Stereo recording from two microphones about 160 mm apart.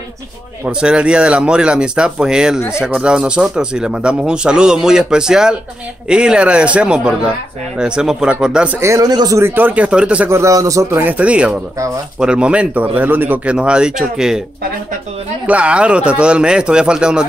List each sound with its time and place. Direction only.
0.7 s speech: 5° right (ahead or behind)
15.4 s speech: 10° right (ahead or behind)